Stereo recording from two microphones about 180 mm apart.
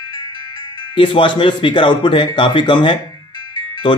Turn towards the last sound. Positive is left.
turn(degrees=25)  # may be behind; listen again after turning